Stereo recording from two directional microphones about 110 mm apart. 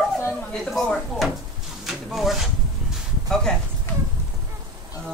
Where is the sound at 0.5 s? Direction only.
5° left (ahead or behind).